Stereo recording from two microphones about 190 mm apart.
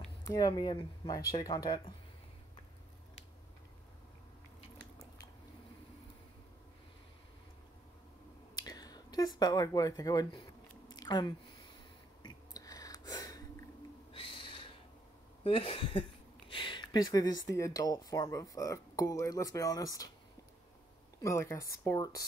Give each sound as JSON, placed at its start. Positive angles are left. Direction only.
{"t": 0.2, "sound": "speech", "side_deg": 20}
{"t": 8.5, "sound": "speech", "side_deg": 20}
{"t": 12.2, "sound": "a sound", "side_deg": 20}
{"t": 14.1, "sound": "owl", "side_deg": 25}
{"t": 15.4, "sound": "speech", "side_deg": 30}
{"t": 21.2, "sound": "speech", "side_deg": 15}